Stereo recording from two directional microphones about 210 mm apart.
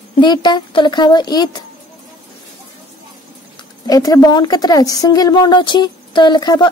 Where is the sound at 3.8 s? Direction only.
15° left (ahead or behind).